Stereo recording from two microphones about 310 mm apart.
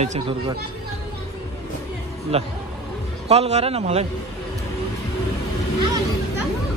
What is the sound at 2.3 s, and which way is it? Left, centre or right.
Speech, centre.